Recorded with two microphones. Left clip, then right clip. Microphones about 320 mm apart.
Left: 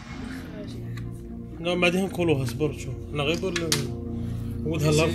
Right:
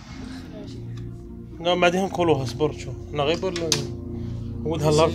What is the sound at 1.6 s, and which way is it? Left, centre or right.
Speech, right.